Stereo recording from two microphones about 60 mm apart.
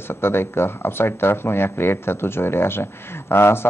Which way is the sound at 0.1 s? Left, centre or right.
Left.